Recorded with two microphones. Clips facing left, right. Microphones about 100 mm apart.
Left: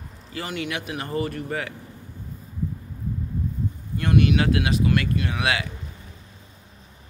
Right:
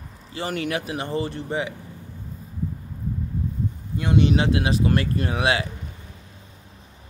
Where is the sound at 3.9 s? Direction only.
20° right (ahead or behind).